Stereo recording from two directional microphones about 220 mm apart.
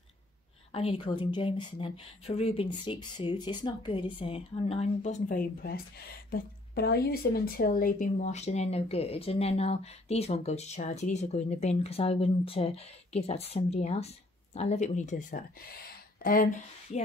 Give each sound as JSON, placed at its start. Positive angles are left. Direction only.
{"t": 0.7, "sound": "speech", "side_deg": 25}